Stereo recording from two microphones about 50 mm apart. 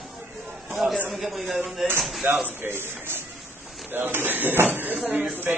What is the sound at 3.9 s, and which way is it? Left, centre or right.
Speech, right.